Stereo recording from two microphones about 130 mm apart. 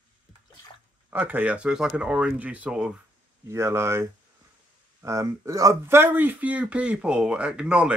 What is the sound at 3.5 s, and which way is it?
Speech, 20° right (ahead or behind).